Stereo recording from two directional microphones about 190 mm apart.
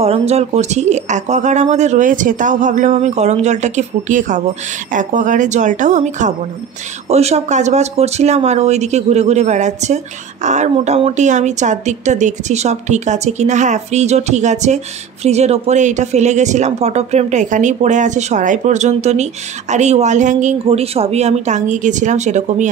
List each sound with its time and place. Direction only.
0.0 s speech: 35° right (ahead or behind)